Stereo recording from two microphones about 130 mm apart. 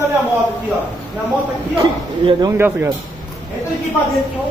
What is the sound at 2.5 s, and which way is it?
Speech, 20° right (ahead or behind).